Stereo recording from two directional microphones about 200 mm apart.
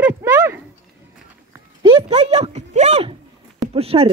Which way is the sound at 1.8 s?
25° right (ahead or behind).